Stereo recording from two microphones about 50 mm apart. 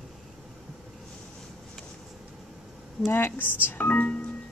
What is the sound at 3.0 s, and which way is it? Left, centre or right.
Speech, left.